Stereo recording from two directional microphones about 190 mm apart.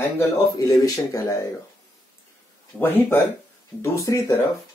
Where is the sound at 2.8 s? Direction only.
10° left (ahead or behind).